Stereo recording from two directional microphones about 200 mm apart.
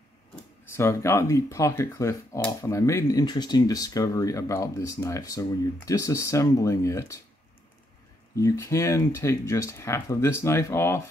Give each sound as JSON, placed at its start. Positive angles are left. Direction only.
{"t": 0.7, "sound": "speech", "side_deg": 15}
{"t": 8.4, "sound": "speech", "side_deg": 15}